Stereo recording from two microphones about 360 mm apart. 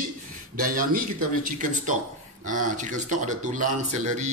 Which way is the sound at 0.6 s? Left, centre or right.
Right.